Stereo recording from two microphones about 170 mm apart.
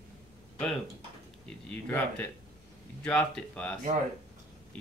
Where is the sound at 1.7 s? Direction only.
10° left (ahead or behind).